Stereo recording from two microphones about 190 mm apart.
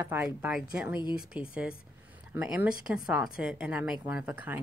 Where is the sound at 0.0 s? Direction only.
10° right (ahead or behind).